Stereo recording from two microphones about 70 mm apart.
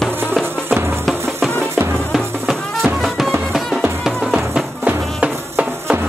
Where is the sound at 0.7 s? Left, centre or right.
Right.